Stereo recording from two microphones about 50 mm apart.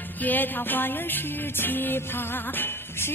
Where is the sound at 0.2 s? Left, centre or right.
Left.